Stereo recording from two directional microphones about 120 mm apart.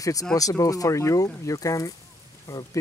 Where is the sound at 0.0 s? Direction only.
30° left (ahead or behind).